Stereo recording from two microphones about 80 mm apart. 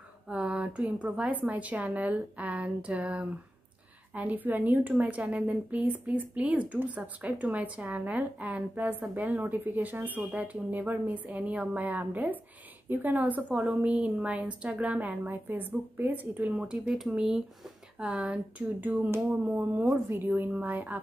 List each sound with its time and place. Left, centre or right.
0.3 s a sound: centre
1.0 s a woman's voice: centre
16.5 s a woman's voice: centre